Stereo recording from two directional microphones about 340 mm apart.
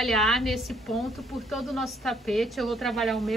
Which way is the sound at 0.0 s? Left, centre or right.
Centre.